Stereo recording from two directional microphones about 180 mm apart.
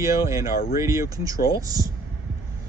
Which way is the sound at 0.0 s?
15° right (ahead or behind).